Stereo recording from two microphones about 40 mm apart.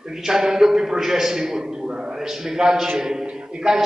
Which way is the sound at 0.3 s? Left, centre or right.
Centre.